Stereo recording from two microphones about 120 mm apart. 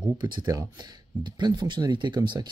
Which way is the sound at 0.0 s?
40° right (ahead or behind).